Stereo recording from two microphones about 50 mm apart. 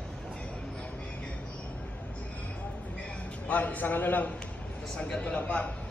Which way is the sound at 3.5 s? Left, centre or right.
Left.